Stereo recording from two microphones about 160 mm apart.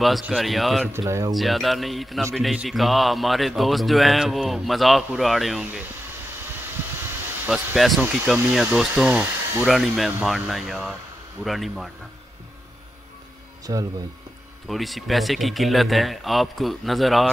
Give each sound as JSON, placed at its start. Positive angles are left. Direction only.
{"t": 0.0, "sound": "a man's voice", "side_deg": 0}
{"t": 0.9, "sound": "speech", "side_deg": -20}
{"t": 1.3, "sound": "a man's voice", "side_deg": 0}
{"t": 7.4, "sound": "a man's voice", "side_deg": 0}
{"t": 13.7, "sound": "speech", "side_deg": -25}
{"t": 14.7, "sound": "a man's voice", "side_deg": 0}